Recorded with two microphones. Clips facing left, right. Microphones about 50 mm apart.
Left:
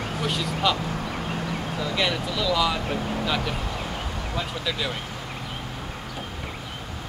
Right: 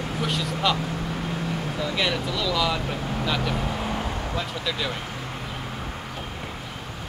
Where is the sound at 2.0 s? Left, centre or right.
Centre.